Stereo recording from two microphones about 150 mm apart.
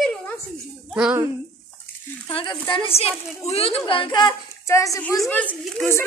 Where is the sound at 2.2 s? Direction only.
30° left (ahead or behind).